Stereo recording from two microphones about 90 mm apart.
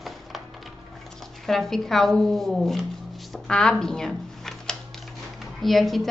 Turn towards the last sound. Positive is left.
turn(degrees=0)  # may be behind; listen again after turning